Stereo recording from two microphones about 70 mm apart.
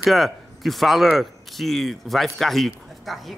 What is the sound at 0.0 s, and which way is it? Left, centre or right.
Speech, centre.